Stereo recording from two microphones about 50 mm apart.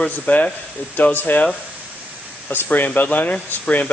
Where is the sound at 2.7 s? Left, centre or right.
Left.